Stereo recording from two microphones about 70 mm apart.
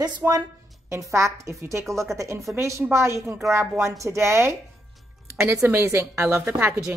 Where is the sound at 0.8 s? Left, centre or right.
Right.